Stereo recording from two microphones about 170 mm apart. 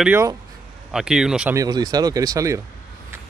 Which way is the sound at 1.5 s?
25° right (ahead or behind).